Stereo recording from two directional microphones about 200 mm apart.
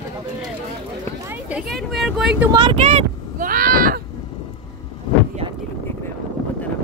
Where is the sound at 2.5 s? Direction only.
25° right (ahead or behind); by 4.0 s 45° right (ahead or behind).